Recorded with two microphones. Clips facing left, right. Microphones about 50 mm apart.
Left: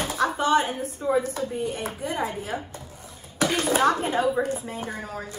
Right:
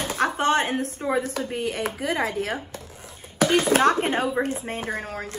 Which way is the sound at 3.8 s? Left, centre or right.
Right.